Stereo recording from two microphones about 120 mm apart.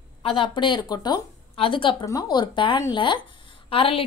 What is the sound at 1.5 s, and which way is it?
Speech, 45° left (ahead or behind).